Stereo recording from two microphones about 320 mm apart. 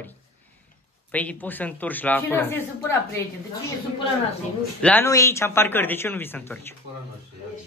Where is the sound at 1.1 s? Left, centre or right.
Centre.